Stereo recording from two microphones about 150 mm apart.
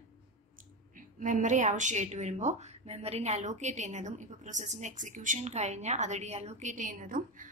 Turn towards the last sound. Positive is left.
turn(degrees=-65)  # may be behind; listen again after turning